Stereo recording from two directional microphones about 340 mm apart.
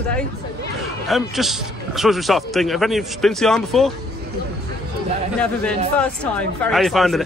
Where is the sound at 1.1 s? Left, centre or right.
Centre.